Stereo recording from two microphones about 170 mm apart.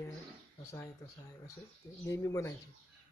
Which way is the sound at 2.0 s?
20° left (ahead or behind).